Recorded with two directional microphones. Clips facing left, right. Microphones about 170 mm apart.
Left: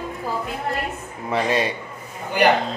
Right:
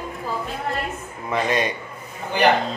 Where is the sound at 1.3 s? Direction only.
30° left (ahead or behind).